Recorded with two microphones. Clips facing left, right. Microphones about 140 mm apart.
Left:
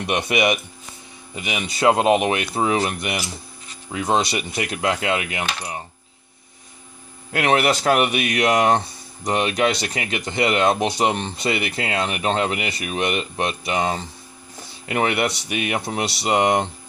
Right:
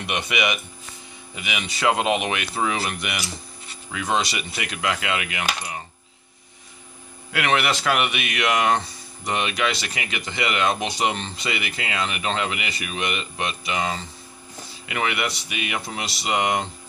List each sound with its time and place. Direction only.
0.0 s speech: 35° left (ahead or behind)
7.3 s speech: 40° left (ahead or behind)
14.9 s speech: 40° left (ahead or behind)